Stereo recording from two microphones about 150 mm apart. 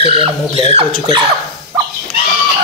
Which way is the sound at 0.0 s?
35° right (ahead or behind).